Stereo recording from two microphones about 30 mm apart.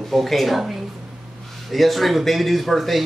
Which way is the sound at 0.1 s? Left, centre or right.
Centre.